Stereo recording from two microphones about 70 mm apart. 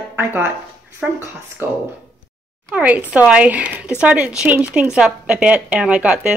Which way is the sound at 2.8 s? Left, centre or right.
Right.